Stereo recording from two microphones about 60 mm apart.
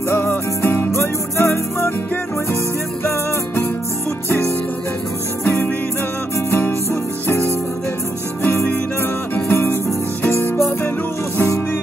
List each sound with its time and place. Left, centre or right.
0.6 s music: left
3.0 s music: left
5.4 s music: left
11.3 s music: left